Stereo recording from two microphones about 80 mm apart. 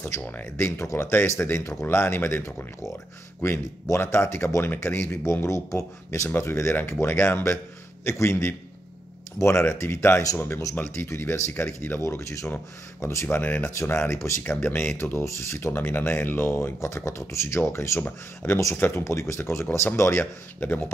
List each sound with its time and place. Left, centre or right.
0.1 s speech: left